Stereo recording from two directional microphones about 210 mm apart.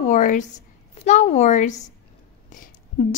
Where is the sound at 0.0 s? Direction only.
35° left (ahead or behind).